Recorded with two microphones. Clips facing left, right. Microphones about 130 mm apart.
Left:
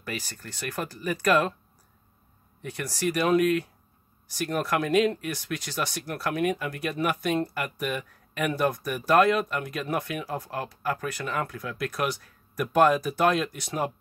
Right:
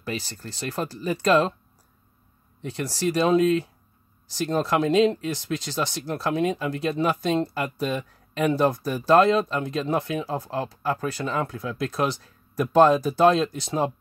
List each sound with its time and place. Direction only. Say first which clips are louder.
0.0 s speech: right 4 dB; 25° right (ahead or behind)
2.6 s speech: right 3 dB; 25° right (ahead or behind)